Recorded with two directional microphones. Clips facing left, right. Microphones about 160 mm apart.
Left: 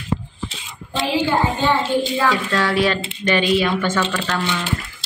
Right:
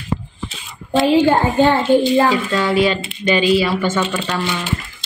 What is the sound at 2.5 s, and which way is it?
A woman's voice, centre (ahead or behind).